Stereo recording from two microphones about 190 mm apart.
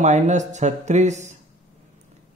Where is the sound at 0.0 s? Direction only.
40° right (ahead or behind).